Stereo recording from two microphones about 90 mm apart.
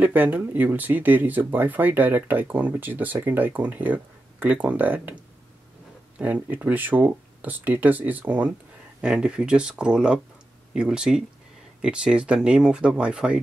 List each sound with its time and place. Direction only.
0.0 s speech: 20° right (ahead or behind)